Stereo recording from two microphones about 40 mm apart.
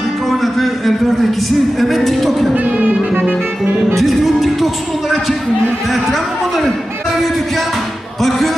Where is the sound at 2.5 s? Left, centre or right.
Right.